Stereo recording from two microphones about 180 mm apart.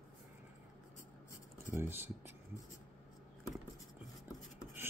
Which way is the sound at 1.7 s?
10° right (ahead or behind).